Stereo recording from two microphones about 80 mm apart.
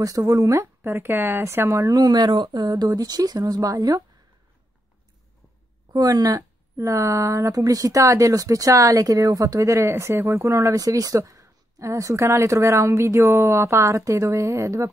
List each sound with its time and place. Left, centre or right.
0.0 s speech: right
5.9 s speech: right